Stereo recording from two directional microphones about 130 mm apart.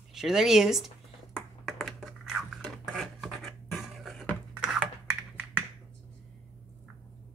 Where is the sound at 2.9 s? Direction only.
Centre (ahead or behind).